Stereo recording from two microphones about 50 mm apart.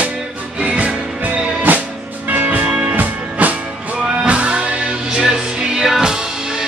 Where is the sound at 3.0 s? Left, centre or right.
Right.